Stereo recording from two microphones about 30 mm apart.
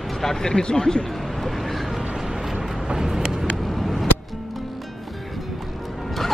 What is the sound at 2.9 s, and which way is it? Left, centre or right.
Vehicle, centre.